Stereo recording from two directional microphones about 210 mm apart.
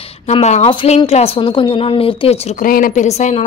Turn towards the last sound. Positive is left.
turn(degrees=30)  # may be behind; listen again after turning